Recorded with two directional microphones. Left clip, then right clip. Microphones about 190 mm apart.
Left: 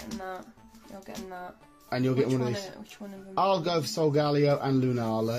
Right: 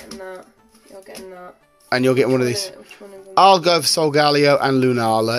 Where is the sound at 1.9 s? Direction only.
60° right (ahead or behind).